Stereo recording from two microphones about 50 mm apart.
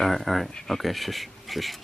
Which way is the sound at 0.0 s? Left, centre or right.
Centre.